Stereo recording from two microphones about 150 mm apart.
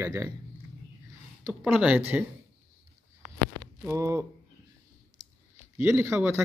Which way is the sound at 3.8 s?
20° right (ahead or behind).